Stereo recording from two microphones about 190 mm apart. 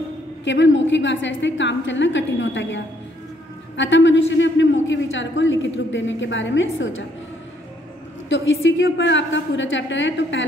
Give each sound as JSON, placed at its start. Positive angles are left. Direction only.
{"t": 0.5, "sound": "a man's voice", "side_deg": 70}
{"t": 8.3, "sound": "a man's voice", "side_deg": 80}